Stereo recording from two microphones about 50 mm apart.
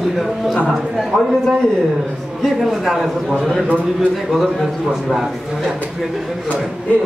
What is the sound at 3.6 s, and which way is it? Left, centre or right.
Speech, right.